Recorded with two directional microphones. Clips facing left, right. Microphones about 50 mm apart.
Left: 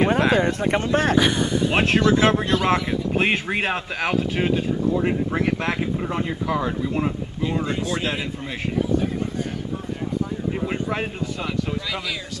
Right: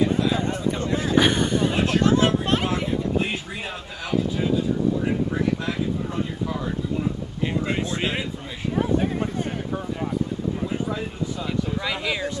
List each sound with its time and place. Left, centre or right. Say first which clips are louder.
0.0 s speech: left 4 dB; left
1.3 s speech: even; right
1.7 s speech: left 5 dB; left
7.4 s speech: even; right
11.8 s speech: right 3 dB; right